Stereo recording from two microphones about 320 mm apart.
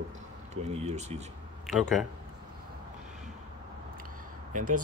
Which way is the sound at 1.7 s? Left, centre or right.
Centre.